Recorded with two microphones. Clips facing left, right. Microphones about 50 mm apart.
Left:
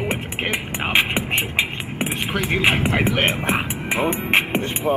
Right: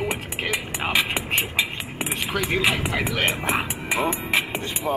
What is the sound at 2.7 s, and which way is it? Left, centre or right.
Music, left.